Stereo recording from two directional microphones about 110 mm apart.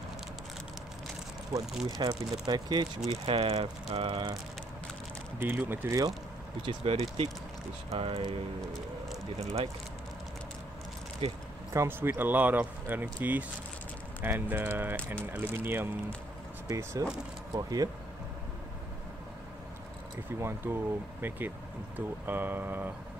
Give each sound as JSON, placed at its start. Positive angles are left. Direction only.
{"t": 2.0, "sound": "speech", "side_deg": -40}
{"t": 3.1, "sound": "speech", "side_deg": -60}
{"t": 5.4, "sound": "speech", "side_deg": -20}
{"t": 6.6, "sound": "speech", "side_deg": -55}
{"t": 9.4, "sound": "speech", "side_deg": -70}
{"t": 11.2, "sound": "a sound", "side_deg": -60}
{"t": 11.7, "sound": "speech", "side_deg": -25}
{"t": 20.2, "sound": "speech", "side_deg": -20}